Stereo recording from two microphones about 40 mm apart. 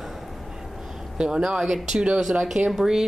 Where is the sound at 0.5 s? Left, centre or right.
Centre.